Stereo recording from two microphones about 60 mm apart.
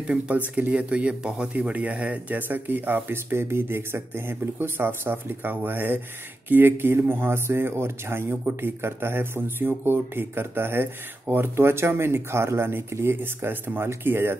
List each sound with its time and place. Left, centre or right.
0.0 s speech: right